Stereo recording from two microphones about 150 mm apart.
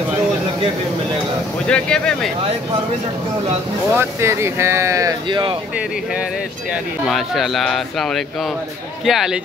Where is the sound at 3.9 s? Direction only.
20° right (ahead or behind).